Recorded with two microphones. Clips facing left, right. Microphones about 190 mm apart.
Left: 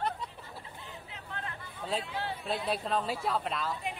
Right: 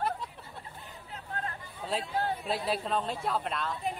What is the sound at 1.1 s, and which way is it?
Chatter, 45° right (ahead or behind).